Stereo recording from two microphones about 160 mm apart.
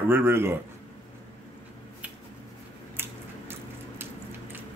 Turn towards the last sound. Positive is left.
turn(degrees=-15)  # may be behind; listen again after turning